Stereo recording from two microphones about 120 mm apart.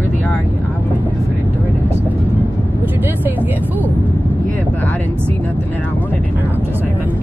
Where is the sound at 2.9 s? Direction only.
15° right (ahead or behind).